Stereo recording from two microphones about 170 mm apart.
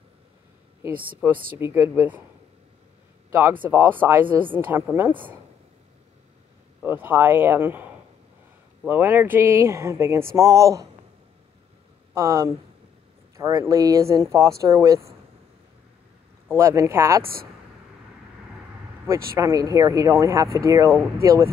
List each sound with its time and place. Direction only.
0.8 s speech: 10° right (ahead or behind)
3.3 s speech: 15° right (ahead or behind)
6.8 s speech: 10° right (ahead or behind)
8.8 s speech: 10° right (ahead or behind)
12.1 s speech: 20° right (ahead or behind)
16.5 s speech: 15° right (ahead or behind)
17.2 s speech: 60° right (ahead or behind)
19.3 s speech: 20° right (ahead or behind)